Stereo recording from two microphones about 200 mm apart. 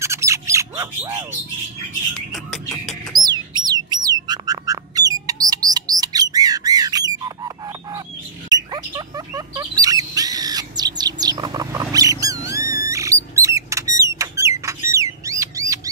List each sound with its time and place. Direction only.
0.0 s bird: 15° right (ahead or behind)
2.3 s music: centre (ahead or behind)
3.3 s bird: 20° right (ahead or behind)
12.6 s mouse: 45° left (ahead or behind)
12.9 s rodents: 15° right (ahead or behind)
14.6 s a sound: 15° right (ahead or behind)
15.2 s bird: 15° right (ahead or behind)